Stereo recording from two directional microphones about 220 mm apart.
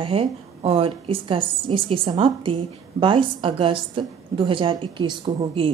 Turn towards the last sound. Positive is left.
turn(degrees=-25)  # may be behind; listen again after turning